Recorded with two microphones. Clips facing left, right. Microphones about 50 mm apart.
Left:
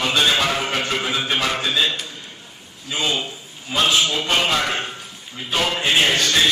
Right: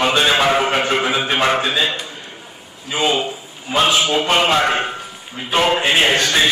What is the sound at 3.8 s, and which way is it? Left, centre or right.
A man's voice, centre.